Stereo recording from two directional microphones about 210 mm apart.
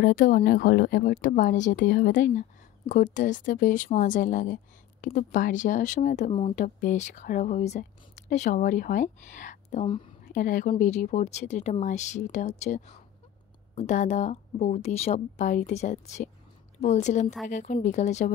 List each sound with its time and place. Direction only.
0.0 s speech: 40° left (ahead or behind)